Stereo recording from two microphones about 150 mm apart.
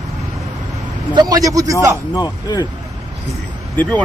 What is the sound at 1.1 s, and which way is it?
Speech, 25° right (ahead or behind).